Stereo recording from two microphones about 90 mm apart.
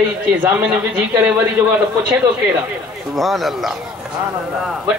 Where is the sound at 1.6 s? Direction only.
40° right (ahead or behind).